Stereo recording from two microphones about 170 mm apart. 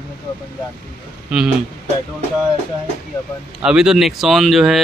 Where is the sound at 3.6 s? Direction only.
5° right (ahead or behind).